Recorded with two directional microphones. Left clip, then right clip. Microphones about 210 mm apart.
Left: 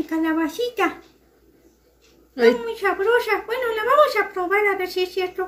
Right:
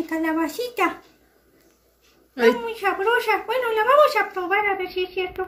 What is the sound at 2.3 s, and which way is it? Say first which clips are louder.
Speech: left 2 dB; 10° left (ahead or behind).